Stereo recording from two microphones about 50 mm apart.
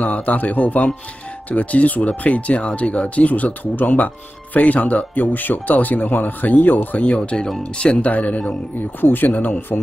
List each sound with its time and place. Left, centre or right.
0.0 s speech: left
7.0 s speech: left
8.7 s speech: left